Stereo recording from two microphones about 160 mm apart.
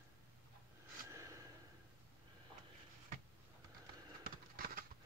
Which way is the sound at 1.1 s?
20° right (ahead or behind).